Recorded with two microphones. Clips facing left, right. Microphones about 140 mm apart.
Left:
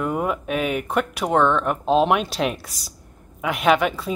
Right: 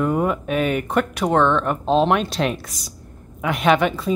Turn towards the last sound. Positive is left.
turn(degrees=5)  # may be behind; listen again after turning